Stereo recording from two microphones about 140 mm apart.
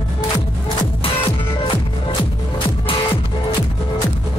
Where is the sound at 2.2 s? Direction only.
40° left (ahead or behind).